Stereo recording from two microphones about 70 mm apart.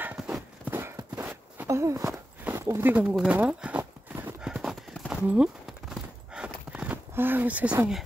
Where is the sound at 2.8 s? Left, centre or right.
Right.